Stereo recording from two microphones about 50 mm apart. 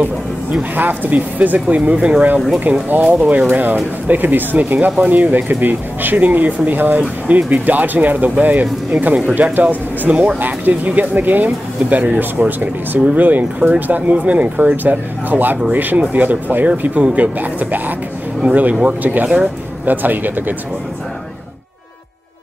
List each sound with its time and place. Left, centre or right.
0.0 s a sound: right
0.7 s speech: right
3.4 s speech: right
10.4 s speech: right
19.9 s speech: right